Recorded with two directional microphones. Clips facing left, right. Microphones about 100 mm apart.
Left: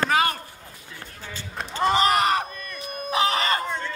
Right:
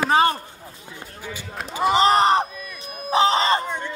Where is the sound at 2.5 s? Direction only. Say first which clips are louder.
Right 1 dB; 5° right (ahead or behind).